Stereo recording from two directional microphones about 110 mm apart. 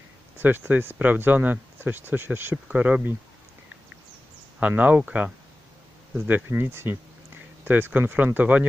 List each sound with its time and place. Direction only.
0.4 s speech: 20° right (ahead or behind)
4.6 s speech: 15° right (ahead or behind)